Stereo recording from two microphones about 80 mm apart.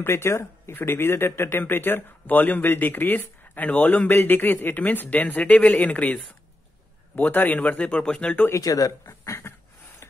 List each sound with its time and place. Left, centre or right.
0.0 s speech: left; by 6.1 s centre
7.2 s speech: left
8.5 s speech: left
9.0 s speech: left